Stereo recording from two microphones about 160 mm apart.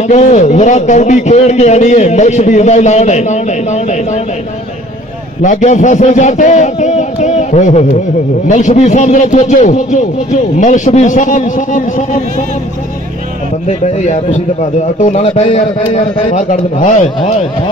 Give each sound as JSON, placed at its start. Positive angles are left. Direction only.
{"t": 0.0, "sound": "a man's voice", "side_deg": 45}
{"t": 5.4, "sound": "a man's voice", "side_deg": 50}
{"t": 13.7, "sound": "a man's voice", "side_deg": 45}